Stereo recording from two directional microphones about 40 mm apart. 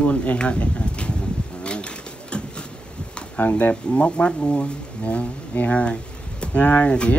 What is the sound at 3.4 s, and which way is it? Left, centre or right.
Speech, left.